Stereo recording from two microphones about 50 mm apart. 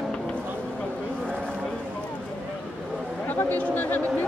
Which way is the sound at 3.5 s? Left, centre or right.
Left.